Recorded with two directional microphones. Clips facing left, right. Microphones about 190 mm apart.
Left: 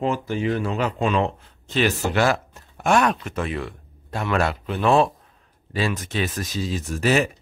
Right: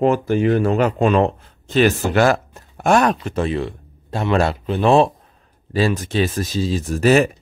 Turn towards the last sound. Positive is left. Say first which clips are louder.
# right 6 dB
turn(degrees=-45)  # may be behind; listen again after turning